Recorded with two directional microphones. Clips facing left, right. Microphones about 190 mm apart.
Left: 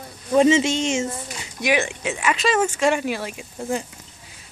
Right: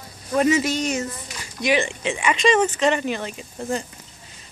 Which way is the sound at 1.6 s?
10° left (ahead or behind).